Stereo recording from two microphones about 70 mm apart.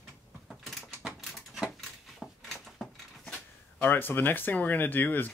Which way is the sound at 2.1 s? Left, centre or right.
Centre.